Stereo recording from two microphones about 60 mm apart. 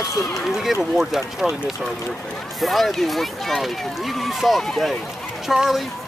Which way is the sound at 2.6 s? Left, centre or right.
Centre.